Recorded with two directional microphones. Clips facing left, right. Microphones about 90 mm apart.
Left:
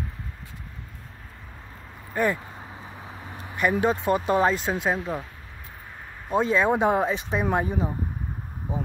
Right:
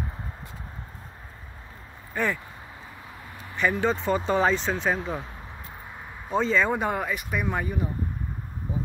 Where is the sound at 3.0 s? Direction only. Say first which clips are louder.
Left 3 dB; 25° left (ahead or behind).